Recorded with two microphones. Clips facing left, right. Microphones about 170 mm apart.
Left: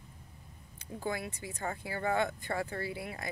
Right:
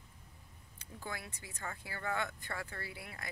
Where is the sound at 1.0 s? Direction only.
20° left (ahead or behind).